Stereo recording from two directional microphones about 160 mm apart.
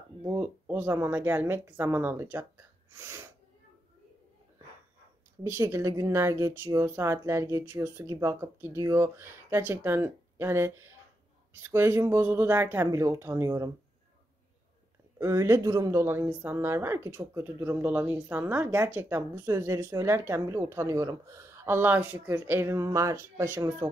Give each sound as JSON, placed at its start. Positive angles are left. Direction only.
{"t": 0.2, "sound": "speech", "side_deg": -15}
{"t": 5.4, "sound": "speech", "side_deg": -15}
{"t": 15.1, "sound": "speech", "side_deg": -15}